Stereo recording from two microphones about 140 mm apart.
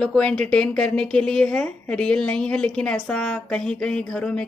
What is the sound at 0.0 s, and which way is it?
A woman's voice, 5° left (ahead or behind).